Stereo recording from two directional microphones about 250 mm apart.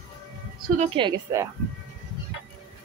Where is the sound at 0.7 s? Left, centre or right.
Right.